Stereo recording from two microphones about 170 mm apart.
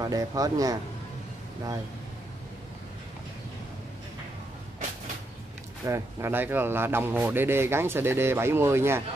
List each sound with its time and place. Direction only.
0.0 s speech: 20° right (ahead or behind)
5.9 s speech: 15° right (ahead or behind)